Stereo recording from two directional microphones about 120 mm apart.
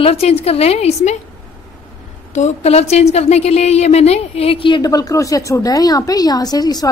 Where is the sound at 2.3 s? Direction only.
70° left (ahead or behind); by 4.8 s 45° left (ahead or behind).